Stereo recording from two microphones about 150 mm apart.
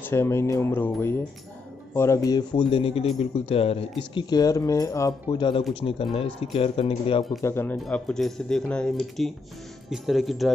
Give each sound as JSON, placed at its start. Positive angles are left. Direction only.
{"t": 0.1, "sound": "speech", "side_deg": 15}
{"t": 7.4, "sound": "speech", "side_deg": 15}
{"t": 7.7, "sound": "speech", "side_deg": 0}